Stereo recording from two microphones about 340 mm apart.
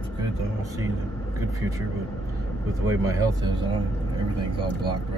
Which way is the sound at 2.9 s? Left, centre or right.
Centre.